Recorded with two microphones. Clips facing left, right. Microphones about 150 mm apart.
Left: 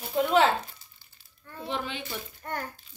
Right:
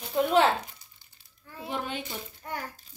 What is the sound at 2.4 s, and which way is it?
Speech, 5° right (ahead or behind).